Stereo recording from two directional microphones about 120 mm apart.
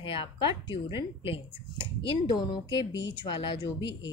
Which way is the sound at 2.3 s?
35° left (ahead or behind).